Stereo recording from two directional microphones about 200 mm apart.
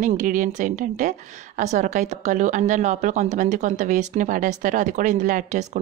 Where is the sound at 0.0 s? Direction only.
40° right (ahead or behind).